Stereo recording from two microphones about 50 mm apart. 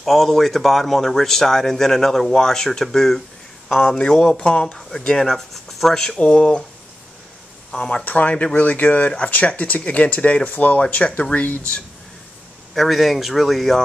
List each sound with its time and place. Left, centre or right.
0.0 s speech: centre
8.1 s speech: left
12.7 s speech: centre